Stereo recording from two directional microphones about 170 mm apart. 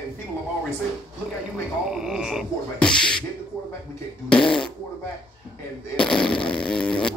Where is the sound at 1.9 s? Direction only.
5° right (ahead or behind).